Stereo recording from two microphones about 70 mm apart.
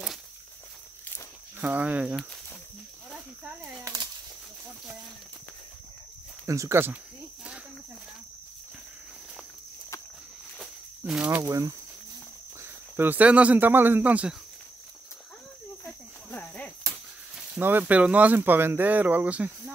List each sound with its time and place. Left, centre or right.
1.6 s speech: right
3.8 s a sound: right
6.4 s speech: right
11.4 s speech: right
12.6 s speech: right
15.8 s cricket: left
17.6 s speech: right